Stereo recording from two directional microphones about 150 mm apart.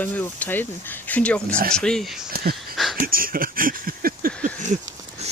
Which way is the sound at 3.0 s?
70° right (ahead or behind).